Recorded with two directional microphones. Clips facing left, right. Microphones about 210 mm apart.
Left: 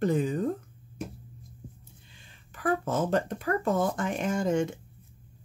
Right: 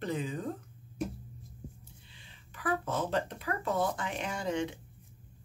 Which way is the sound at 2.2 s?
45° left (ahead or behind).